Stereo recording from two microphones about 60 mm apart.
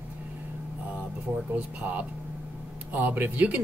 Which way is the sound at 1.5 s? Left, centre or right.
Right.